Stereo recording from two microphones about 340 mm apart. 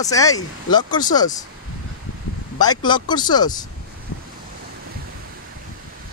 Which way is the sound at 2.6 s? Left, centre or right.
Centre.